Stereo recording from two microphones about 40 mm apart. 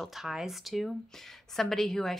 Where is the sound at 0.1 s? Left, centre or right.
Centre.